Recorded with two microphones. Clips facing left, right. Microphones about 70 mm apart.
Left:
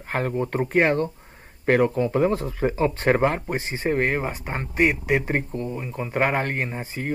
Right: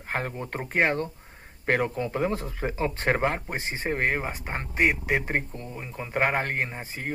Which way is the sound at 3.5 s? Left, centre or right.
Right.